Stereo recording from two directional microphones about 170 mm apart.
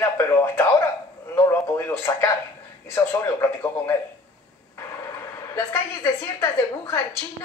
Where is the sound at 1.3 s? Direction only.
15° left (ahead or behind).